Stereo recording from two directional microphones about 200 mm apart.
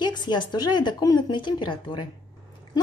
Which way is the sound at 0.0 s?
20° left (ahead or behind).